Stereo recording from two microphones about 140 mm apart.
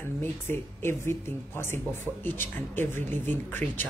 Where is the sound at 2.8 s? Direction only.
15° left (ahead or behind).